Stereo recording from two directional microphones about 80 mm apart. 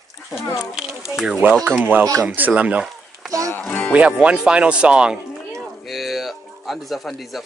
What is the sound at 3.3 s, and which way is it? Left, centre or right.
Music, right.